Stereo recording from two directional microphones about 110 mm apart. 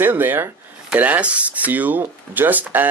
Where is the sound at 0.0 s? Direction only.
20° right (ahead or behind).